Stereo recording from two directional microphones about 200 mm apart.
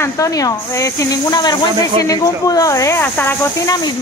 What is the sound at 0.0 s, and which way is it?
Speech, 15° left (ahead or behind).